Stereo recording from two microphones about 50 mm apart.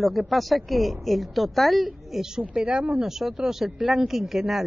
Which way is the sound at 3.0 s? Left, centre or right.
Centre.